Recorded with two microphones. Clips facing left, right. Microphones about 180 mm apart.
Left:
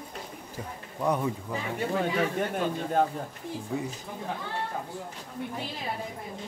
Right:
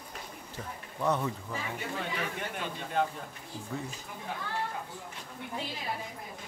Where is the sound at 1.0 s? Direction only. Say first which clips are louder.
Left 2 dB; 10° left (ahead or behind).